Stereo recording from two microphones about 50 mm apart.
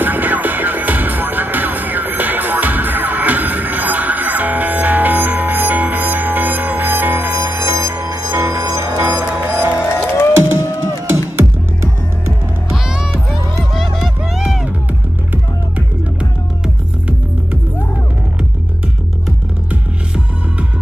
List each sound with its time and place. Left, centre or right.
0.0 s music: right
10.1 s music: left
12.7 s music: centre